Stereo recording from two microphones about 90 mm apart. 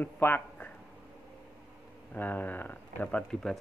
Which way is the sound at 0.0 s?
20° left (ahead or behind).